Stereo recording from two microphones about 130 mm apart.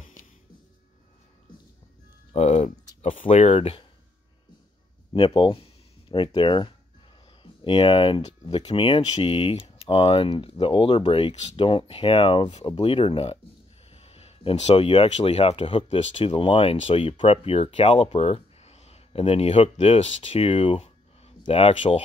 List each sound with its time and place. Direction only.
2.3 s speech: 60° left (ahead or behind)
5.1 s speech: 45° left (ahead or behind)